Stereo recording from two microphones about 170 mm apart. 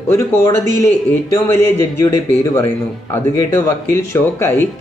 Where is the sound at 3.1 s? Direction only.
15° left (ahead or behind).